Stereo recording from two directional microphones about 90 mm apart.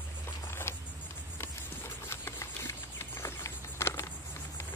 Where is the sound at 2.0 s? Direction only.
30° left (ahead or behind).